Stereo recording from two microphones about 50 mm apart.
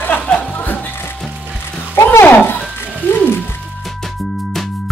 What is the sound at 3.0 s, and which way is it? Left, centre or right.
Music, left.